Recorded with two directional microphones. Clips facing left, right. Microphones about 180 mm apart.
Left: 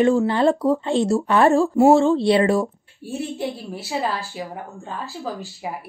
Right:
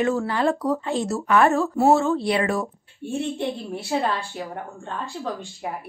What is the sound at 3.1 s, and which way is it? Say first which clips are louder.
A woman's voice: right 1 dB; 5° left (ahead or behind).